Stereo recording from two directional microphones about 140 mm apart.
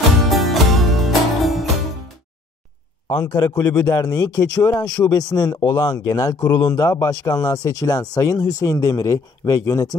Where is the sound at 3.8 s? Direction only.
25° left (ahead or behind).